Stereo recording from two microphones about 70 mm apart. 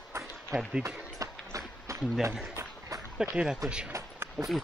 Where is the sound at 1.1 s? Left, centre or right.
Right.